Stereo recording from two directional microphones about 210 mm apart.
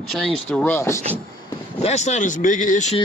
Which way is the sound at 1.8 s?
30° left (ahead or behind).